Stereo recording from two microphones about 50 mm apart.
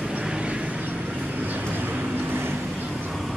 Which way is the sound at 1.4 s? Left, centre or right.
Right.